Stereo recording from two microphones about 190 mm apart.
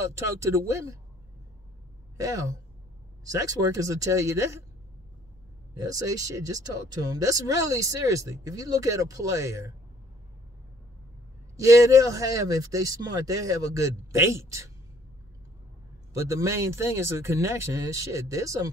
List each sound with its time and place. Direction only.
0.0 s speech: 15° right (ahead or behind)
2.1 s speech: 15° right (ahead or behind)
5.8 s speech: 20° right (ahead or behind)
11.5 s speech: 15° right (ahead or behind)
16.1 s speech: 15° right (ahead or behind)